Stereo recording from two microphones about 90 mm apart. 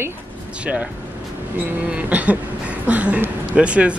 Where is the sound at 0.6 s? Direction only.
15° right (ahead or behind).